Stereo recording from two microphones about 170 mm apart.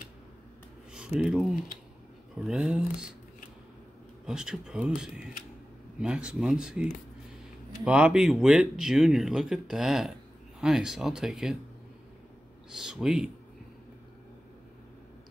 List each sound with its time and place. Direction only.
0.9 s speech: 5° right (ahead or behind)
4.3 s speech: 5° right (ahead or behind)
12.7 s speech: 5° right (ahead or behind)